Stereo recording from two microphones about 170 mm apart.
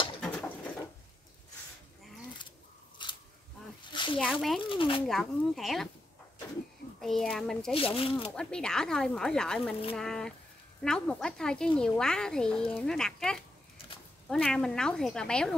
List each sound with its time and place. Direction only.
0.2 s bird: 5° left (ahead or behind)
3.0 s single-lens reflex camera: 25° left (ahead or behind)
3.8 s a sound: 30° left (ahead or behind)
4.2 s speech: centre (ahead or behind)
4.6 s speech: 30° left (ahead or behind)
5.0 s speech: centre (ahead or behind)
7.0 s speech: centre (ahead or behind)
7.7 s speech: 35° left (ahead or behind)
8.4 s speech: 5° left (ahead or behind)